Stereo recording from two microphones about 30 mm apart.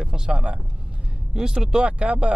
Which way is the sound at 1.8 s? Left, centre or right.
Right.